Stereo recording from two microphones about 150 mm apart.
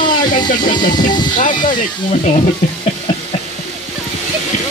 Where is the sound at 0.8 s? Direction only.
60° left (ahead or behind).